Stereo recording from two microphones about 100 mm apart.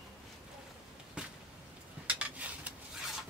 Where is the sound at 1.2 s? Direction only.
10° right (ahead or behind).